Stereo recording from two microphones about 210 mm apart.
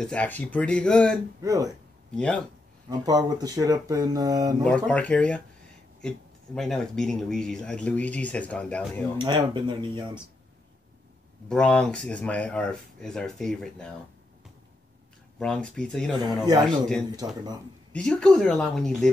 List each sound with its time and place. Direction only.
0.0 s speech: 5° left (ahead or behind)
1.4 s speech: 15° right (ahead or behind)
2.1 s speech: 5° left (ahead or behind)
2.9 s speech: 20° right (ahead or behind)
4.6 s speech: 5° left (ahead or behind)
9.2 s speech: 20° right (ahead or behind)
11.4 s speech: 5° left (ahead or behind)
15.3 s speech: 5° left (ahead or behind)
17.2 s speech: 20° right (ahead or behind)
17.9 s speech: 5° left (ahead or behind)